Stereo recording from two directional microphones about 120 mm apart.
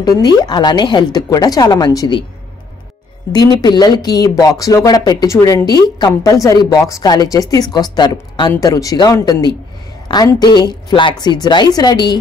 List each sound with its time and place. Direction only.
0.0 s a woman's voice: 30° left (ahead or behind)
3.6 s a woman's voice: 35° left (ahead or behind)